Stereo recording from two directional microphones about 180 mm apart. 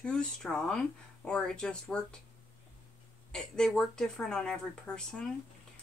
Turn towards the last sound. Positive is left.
turn(degrees=5)  # may be behind; listen again after turning